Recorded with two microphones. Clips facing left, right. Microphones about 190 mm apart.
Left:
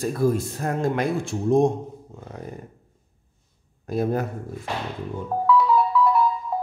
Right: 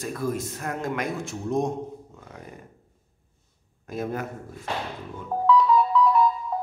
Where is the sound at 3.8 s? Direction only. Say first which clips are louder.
Left 6 dB; 35° left (ahead or behind).